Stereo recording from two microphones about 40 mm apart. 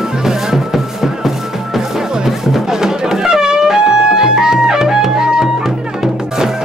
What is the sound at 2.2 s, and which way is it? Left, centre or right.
Music, centre.